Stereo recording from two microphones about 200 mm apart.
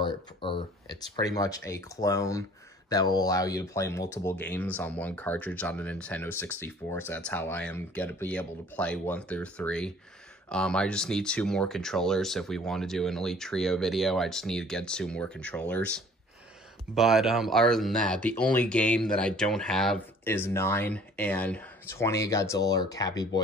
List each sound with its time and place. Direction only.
0.0 s speech: 25° left (ahead or behind)